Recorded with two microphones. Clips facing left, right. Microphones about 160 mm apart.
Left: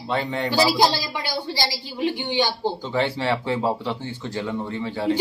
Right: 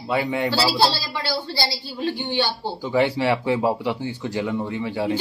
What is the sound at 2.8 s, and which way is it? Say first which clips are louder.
Speech: right 6 dB; 10° right (ahead or behind).